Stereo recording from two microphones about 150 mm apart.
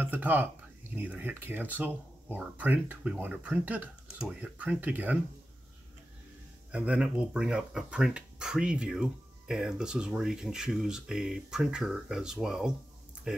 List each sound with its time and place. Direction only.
0.0 s speech: 10° right (ahead or behind)
6.7 s speech: 10° right (ahead or behind)